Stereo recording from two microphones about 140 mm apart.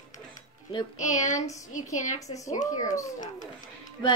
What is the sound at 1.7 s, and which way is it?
Speech, 60° left (ahead or behind).